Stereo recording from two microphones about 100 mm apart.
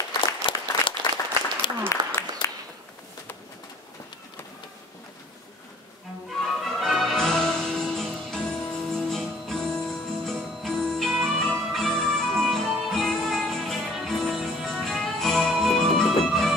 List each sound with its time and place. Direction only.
0.1 s applause: 55° left (ahead or behind)
1.9 s applause: 30° left (ahead or behind)
2.4 s a sound: 50° left (ahead or behind)
6.4 s music: centre (ahead or behind)